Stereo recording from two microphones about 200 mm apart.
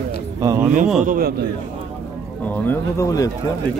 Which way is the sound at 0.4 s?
10° right (ahead or behind).